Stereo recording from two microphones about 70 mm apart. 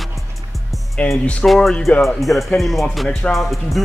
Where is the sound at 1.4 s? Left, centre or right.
Centre.